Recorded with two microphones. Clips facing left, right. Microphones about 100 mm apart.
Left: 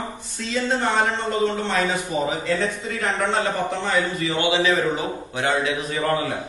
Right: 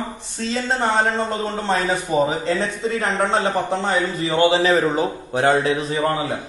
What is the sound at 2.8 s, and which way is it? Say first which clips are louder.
A man's voice: right 3 dB; 35° right (ahead or behind).